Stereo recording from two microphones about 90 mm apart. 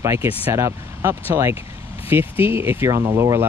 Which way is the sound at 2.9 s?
40° right (ahead or behind).